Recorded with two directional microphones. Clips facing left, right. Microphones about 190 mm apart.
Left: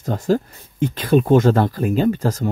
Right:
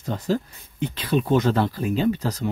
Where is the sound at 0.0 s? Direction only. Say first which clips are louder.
Left 5 dB; 45° left (ahead or behind).